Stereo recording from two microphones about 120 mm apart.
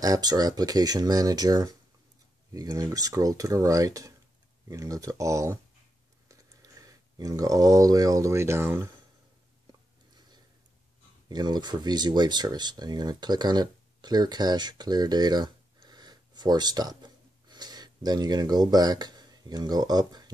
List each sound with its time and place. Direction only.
0.0 s speech: 30° right (ahead or behind)
9.7 s a sound: 35° right (ahead or behind)
11.2 s speech: 35° right (ahead or behind)